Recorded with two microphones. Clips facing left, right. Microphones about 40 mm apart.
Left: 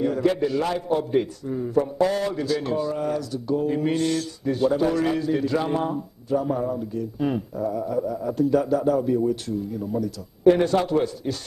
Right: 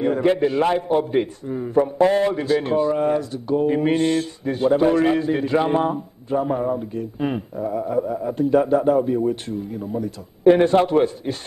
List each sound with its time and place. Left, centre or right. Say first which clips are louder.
0.0 s a man's voice: right 3 dB; right